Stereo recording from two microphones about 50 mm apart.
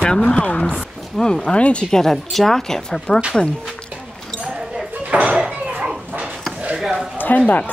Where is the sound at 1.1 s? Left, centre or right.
Centre.